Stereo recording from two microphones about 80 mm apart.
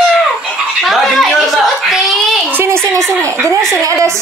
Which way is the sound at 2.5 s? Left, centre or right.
Right.